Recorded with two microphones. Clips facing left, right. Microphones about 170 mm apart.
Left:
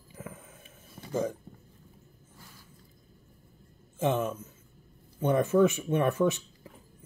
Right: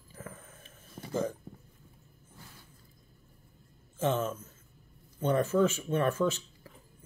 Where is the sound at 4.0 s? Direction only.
15° left (ahead or behind).